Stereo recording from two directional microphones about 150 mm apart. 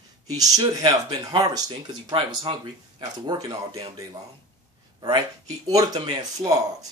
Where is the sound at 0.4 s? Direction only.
25° right (ahead or behind).